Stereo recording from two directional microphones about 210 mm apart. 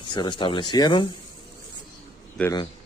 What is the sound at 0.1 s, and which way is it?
Speech, 20° left (ahead or behind).